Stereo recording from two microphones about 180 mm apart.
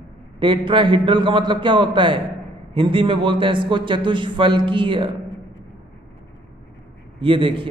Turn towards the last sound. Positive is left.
turn(degrees=-30)  # may be behind; listen again after turning